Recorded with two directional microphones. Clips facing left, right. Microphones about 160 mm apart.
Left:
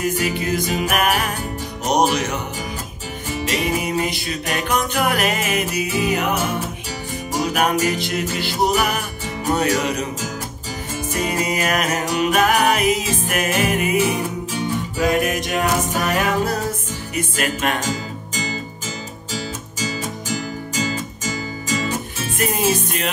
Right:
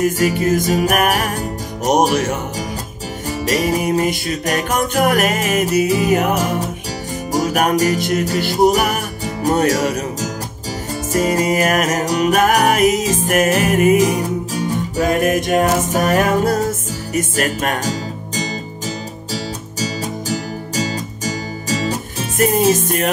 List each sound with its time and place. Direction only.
0.2 s music: 45° right (ahead or behind)